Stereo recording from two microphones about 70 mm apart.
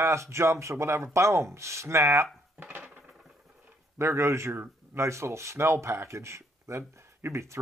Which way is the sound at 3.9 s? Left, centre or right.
Right.